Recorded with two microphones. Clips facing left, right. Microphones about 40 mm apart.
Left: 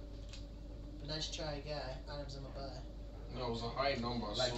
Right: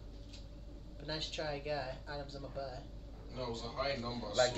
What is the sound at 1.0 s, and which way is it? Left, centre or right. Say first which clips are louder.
Speech: right 3 dB; right.